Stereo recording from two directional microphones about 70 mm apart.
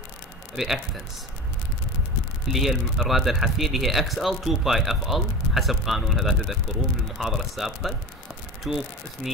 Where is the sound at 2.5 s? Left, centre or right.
Centre.